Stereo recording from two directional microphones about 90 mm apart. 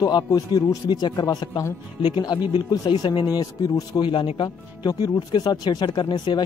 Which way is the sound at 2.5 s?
60° left (ahead or behind).